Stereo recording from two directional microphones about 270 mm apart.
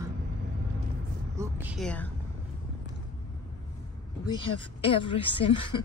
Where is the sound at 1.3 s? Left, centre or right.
Centre.